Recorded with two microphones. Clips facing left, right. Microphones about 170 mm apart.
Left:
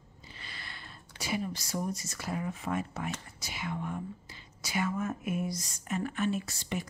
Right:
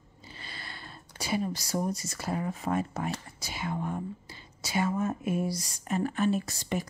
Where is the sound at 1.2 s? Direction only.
35° right (ahead or behind).